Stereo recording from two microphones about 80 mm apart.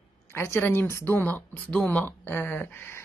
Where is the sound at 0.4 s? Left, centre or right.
Left.